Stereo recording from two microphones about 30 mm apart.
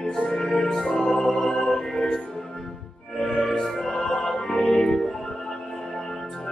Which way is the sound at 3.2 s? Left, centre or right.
Left.